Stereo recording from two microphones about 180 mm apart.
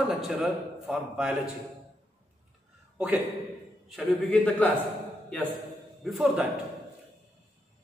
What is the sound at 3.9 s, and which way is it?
Speech, 5° left (ahead or behind).